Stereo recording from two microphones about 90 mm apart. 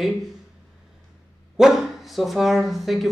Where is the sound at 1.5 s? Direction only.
5° right (ahead or behind).